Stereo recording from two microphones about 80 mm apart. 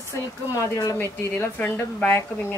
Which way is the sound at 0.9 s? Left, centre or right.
Left.